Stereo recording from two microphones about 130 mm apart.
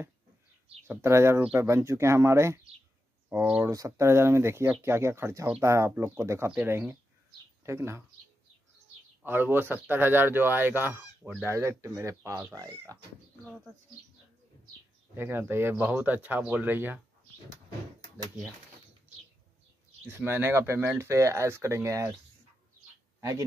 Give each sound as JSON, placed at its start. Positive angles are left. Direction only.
{"t": 0.8, "sound": "speech", "side_deg": -20}
{"t": 3.6, "sound": "speech", "side_deg": -25}
{"t": 9.2, "sound": "speech", "side_deg": -15}
{"t": 15.1, "sound": "speech", "side_deg": -15}
{"t": 20.1, "sound": "speech", "side_deg": -15}